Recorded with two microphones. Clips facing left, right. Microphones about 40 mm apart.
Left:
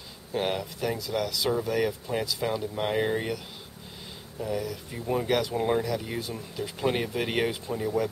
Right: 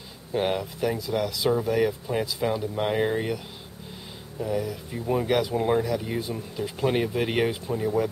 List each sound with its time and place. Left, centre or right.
0.3 s speech: centre
4.4 s speech: centre